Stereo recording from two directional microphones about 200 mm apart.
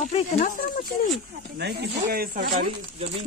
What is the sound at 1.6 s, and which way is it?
Speech, 50° right (ahead or behind).